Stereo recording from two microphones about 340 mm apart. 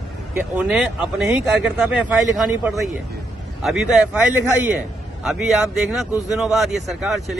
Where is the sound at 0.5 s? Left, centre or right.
Centre.